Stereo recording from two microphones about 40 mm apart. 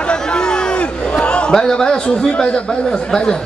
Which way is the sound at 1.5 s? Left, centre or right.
Centre.